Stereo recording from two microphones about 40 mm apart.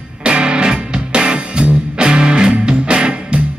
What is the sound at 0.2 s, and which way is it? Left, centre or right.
Music, right.